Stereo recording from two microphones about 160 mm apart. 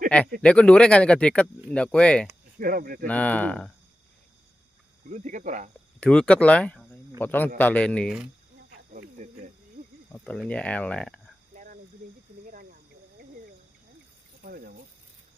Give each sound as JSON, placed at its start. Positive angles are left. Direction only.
{"t": 0.4, "sound": "speech", "side_deg": 5}
{"t": 2.6, "sound": "speech", "side_deg": -60}
{"t": 3.1, "sound": "speech", "side_deg": 10}
{"t": 5.0, "sound": "speech", "side_deg": -50}
{"t": 5.9, "sound": "speech", "side_deg": 5}
{"t": 9.2, "sound": "cricket", "side_deg": -45}
{"t": 10.1, "sound": "speech", "side_deg": 5}
{"t": 11.5, "sound": "a sound", "side_deg": -55}
{"t": 14.4, "sound": "a sound", "side_deg": -60}